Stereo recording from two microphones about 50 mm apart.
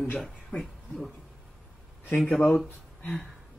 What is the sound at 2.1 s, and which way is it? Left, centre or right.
Speech, left.